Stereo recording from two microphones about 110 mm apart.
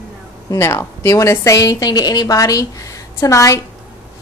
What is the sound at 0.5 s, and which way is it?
A woman's voice, 30° left (ahead or behind).